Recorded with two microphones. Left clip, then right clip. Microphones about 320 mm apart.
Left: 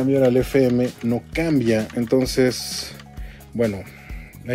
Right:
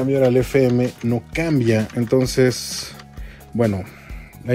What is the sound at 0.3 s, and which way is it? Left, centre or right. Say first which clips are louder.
Speech: right 1 dB; centre.